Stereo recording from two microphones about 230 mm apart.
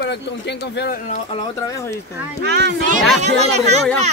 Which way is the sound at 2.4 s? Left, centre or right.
Right.